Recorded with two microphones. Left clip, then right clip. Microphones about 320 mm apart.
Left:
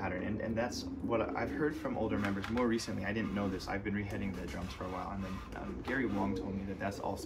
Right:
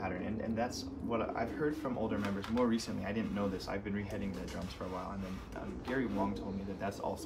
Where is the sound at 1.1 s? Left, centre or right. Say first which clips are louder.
Left 1 dB; centre.